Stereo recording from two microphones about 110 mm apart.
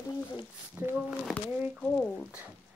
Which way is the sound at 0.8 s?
20° right (ahead or behind).